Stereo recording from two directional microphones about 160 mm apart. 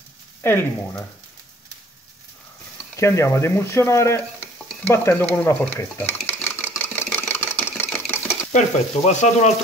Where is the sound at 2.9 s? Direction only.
20° left (ahead or behind).